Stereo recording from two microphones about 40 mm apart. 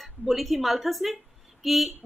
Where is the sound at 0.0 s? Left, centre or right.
Centre.